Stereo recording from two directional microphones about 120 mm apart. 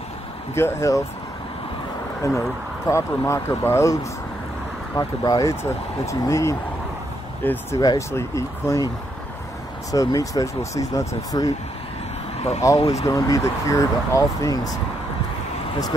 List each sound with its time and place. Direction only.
0.6 s speech: 20° left (ahead or behind)
2.9 s speech: 25° left (ahead or behind)
7.7 s speech: 30° left (ahead or behind)
9.8 s speech: 30° left (ahead or behind)
12.4 s speech: 65° left (ahead or behind)
13.0 s speech: 30° left (ahead or behind)